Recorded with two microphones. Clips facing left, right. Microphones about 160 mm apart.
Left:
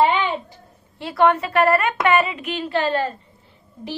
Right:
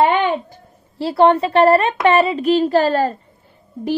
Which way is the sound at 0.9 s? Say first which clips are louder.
Right 5 dB; 30° right (ahead or behind).